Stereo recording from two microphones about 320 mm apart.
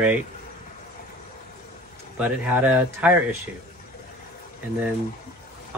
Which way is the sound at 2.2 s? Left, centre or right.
Centre.